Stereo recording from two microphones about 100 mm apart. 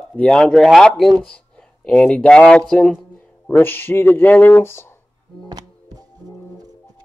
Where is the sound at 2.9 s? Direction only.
20° left (ahead or behind).